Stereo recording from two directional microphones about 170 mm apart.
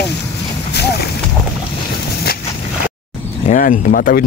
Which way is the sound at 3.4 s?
50° left (ahead or behind).